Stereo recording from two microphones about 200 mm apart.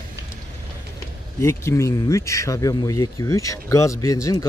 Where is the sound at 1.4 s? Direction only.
15° left (ahead or behind).